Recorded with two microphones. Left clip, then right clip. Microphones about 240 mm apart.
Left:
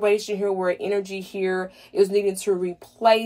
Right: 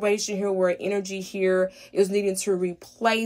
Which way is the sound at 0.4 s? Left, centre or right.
Right.